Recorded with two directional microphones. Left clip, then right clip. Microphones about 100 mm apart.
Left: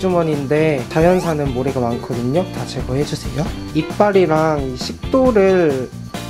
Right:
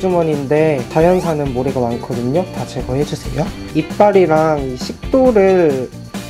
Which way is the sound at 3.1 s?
15° right (ahead or behind).